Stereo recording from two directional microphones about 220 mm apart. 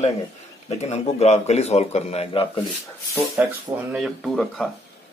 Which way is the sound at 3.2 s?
5° right (ahead or behind).